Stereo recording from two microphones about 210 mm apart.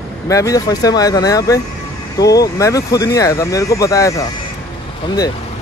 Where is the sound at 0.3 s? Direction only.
15° left (ahead or behind).